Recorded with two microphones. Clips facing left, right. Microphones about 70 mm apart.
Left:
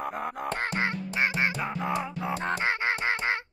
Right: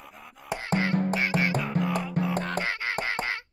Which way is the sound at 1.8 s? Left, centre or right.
Right.